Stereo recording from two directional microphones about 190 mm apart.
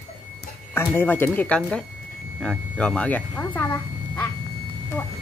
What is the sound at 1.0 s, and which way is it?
Speech, 10° left (ahead or behind).